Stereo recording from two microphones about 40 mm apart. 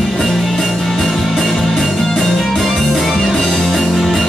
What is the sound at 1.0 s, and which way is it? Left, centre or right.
Music, centre.